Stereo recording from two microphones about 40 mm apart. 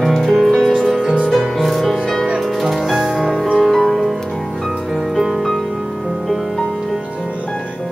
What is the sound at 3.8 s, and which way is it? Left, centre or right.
Music, centre.